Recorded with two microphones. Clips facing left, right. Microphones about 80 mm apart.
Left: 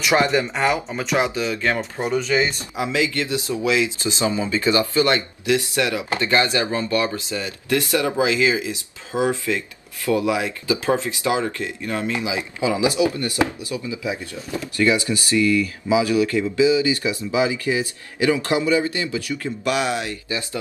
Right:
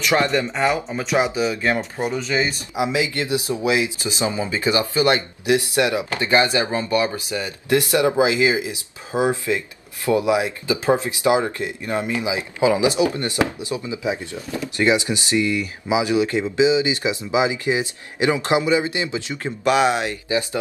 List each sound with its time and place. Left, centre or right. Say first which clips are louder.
0.0 s speech: left 1 dB; centre
1.1 s speech: right 2 dB; centre